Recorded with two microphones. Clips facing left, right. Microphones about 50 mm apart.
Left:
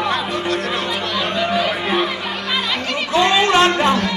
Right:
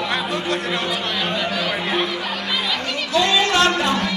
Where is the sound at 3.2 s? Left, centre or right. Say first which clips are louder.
Left 3 dB; left.